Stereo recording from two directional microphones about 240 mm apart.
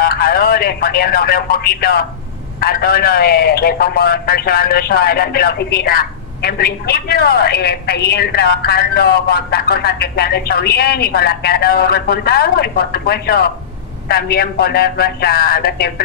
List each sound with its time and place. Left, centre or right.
0.0 s a man's voice: left